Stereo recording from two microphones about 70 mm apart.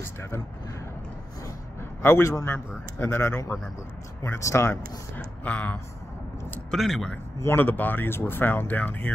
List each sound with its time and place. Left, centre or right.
0.0 s speech: left
1.8 s a sound: left
3.0 s speech: left
5.1 s speech: left
6.7 s speech: centre
7.4 s speech: left